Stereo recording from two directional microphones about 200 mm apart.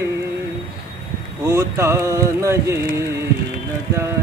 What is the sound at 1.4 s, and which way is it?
Music, 15° right (ahead or behind).